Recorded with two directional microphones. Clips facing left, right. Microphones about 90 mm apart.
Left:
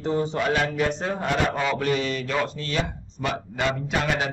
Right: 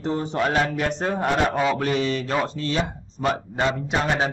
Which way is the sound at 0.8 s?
50° right (ahead or behind).